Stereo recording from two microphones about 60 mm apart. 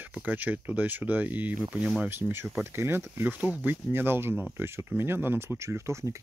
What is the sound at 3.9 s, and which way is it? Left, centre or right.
Speech, right.